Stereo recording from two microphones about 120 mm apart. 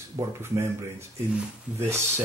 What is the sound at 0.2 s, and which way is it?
Speech, 20° right (ahead or behind).